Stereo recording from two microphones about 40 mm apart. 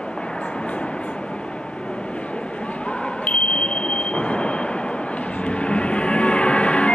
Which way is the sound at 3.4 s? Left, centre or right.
Left.